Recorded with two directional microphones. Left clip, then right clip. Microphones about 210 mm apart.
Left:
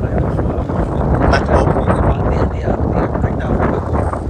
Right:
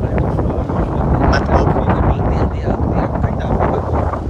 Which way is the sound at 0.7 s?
30° right (ahead or behind).